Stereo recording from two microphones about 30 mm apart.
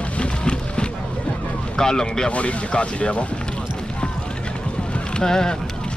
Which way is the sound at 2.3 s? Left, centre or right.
Left.